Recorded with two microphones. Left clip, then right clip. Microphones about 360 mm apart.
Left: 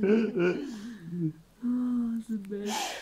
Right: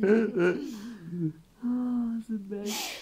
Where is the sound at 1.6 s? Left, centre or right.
Centre.